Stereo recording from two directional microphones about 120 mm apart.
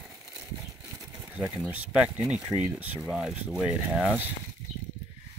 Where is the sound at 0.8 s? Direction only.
25° right (ahead or behind).